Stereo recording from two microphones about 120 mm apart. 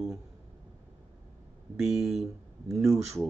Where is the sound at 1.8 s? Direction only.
Centre (ahead or behind).